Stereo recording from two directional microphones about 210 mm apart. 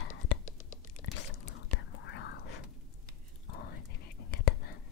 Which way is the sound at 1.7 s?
60° left (ahead or behind).